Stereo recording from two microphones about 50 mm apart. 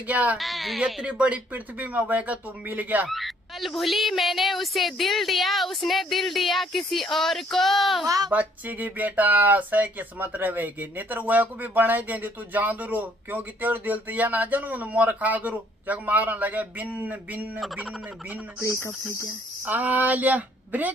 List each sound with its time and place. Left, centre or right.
0.0 s speech: right
0.4 s speech: centre
1.0 s speech: right
3.1 s speech: centre
8.3 s speech: right
18.6 s speech: left
19.6 s speech: right